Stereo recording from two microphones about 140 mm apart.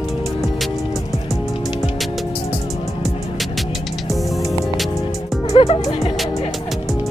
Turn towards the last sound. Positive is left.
turn(degrees=45)  # may be behind; listen again after turning